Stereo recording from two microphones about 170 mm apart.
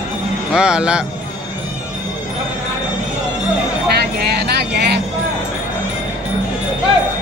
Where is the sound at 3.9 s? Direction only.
75° right (ahead or behind).